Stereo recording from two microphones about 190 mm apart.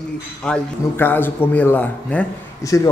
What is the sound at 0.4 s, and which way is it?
A man's voice, 5° left (ahead or behind).